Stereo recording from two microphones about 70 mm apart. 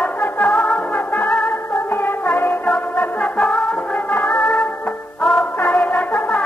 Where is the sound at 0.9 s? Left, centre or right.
Left.